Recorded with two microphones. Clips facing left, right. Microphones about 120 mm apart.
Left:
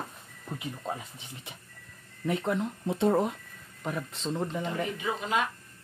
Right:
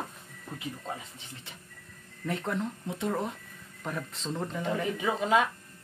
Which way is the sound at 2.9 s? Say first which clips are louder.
Left 8 dB; 30° left (ahead or behind).